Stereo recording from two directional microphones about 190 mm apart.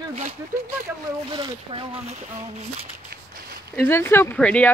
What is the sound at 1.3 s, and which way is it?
Speech, 25° right (ahead or behind).